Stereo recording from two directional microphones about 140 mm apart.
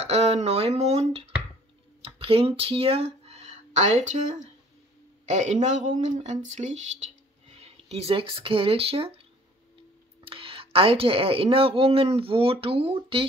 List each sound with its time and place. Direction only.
0.0 s speech: 50° right (ahead or behind)
10.2 s speech: 40° right (ahead or behind)